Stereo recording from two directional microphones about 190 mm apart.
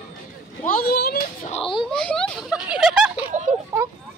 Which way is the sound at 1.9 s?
5° left (ahead or behind).